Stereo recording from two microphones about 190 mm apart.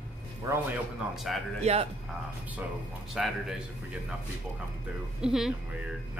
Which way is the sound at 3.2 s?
5° right (ahead or behind).